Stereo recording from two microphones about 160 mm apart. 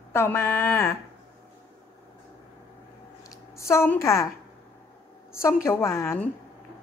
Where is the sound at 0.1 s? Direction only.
15° left (ahead or behind).